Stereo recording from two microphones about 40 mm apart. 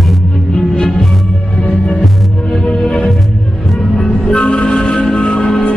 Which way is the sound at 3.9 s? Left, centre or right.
Centre.